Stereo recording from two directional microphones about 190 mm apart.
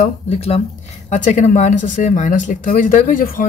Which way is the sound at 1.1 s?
40° left (ahead or behind).